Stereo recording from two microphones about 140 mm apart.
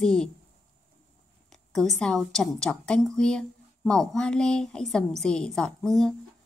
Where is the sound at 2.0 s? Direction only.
5° left (ahead or behind).